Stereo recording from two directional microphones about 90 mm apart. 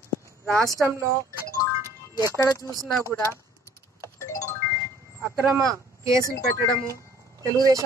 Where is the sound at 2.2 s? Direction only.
40° left (ahead or behind).